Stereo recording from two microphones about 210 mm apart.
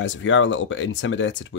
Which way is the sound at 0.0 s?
65° left (ahead or behind).